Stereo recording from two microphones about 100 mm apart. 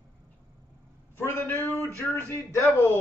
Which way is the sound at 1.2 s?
20° left (ahead or behind).